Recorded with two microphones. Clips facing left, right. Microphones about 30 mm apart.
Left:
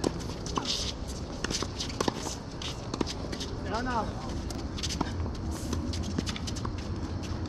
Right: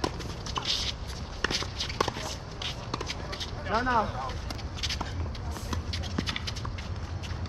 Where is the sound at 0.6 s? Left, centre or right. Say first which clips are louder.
Right 2 dB; centre.